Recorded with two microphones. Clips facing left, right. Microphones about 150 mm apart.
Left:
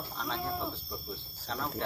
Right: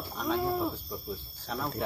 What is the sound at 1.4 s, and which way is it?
Speech, 10° right (ahead or behind).